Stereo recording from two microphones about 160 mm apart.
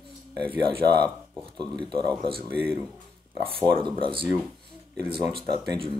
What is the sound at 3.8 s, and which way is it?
Speech, 30° right (ahead or behind).